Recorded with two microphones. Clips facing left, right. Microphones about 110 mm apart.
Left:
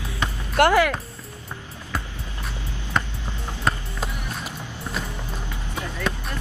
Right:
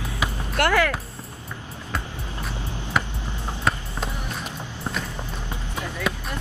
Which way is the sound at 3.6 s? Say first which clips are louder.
Even; centre (ahead or behind).